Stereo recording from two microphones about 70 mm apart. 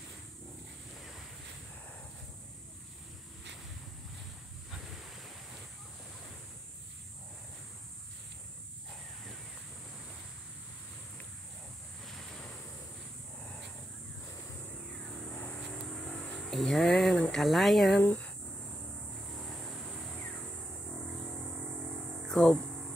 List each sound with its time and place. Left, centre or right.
15.9 s speech: centre
18.0 s speech: left
22.3 s speech: centre